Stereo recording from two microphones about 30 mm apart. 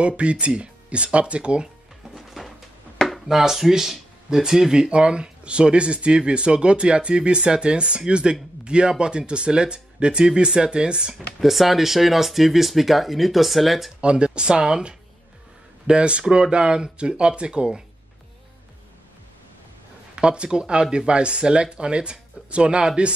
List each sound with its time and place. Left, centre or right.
0.0 s speech: right
2.1 s music: centre
3.3 s speech: centre
4.3 s speech: right
11.4 s speech: centre
14.0 s speech: right
20.2 s speech: right